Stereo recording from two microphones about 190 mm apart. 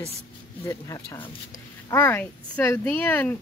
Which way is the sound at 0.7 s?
15° left (ahead or behind).